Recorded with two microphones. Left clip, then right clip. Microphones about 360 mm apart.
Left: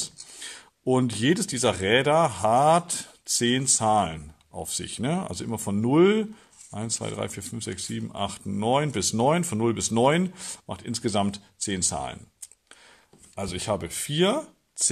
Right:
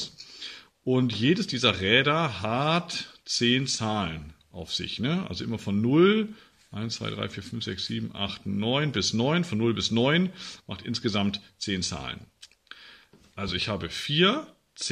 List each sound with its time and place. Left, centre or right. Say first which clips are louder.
0.0 s speech: even; left
13.4 s speech: left 1 dB; centre